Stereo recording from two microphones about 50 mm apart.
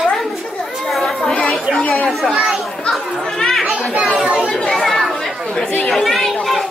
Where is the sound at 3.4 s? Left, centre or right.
Centre.